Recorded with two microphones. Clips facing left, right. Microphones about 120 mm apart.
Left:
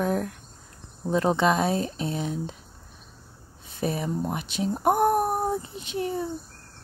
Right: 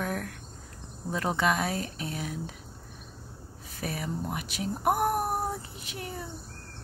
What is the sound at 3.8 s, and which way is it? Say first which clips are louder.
Speech: left 6 dB; 25° left (ahead or behind).